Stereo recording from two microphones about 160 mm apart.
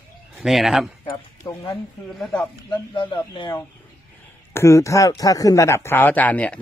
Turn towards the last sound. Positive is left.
turn(degrees=10)  # may be behind; listen again after turning